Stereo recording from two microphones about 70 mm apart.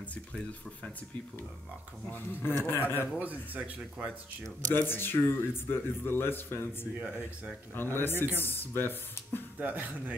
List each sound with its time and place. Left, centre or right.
0.1 s speech: centre
2.0 s a man's voice: left
3.2 s speech: right
4.7 s a man's voice: left
9.6 s speech: right